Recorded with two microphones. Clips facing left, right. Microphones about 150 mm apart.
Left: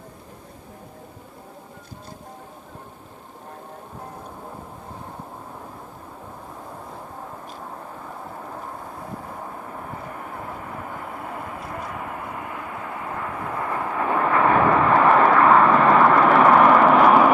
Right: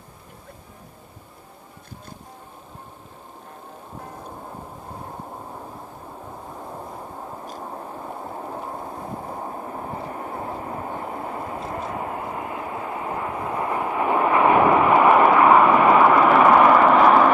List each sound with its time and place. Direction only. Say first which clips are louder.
8.4 s vehicle: right 3 dB; 30° right (ahead or behind); by 17.3 s centre (ahead or behind)